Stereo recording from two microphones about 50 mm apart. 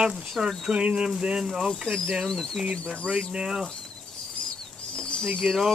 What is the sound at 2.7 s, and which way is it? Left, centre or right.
Speech, centre.